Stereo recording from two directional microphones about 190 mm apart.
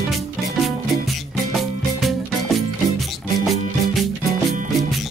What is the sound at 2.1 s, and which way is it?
Music, centre (ahead or behind).